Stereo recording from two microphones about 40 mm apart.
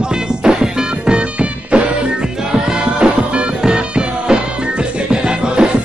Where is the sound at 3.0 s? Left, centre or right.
Right.